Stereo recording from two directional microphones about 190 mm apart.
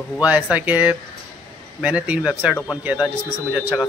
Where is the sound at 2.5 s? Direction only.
10° left (ahead or behind).